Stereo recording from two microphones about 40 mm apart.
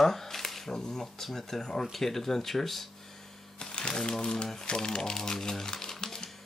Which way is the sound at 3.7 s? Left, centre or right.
Left.